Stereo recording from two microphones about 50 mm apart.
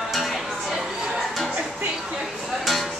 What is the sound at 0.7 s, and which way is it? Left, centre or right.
Music, centre.